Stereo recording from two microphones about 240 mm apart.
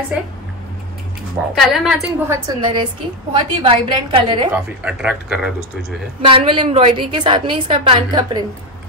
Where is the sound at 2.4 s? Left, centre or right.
Centre.